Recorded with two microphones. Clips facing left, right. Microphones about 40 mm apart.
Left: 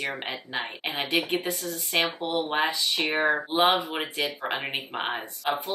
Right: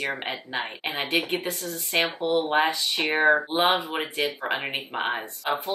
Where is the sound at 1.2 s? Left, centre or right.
Centre.